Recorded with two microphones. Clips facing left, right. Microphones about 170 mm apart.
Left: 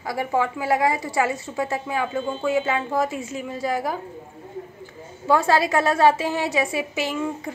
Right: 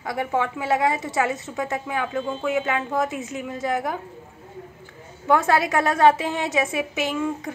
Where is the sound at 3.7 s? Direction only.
Centre (ahead or behind).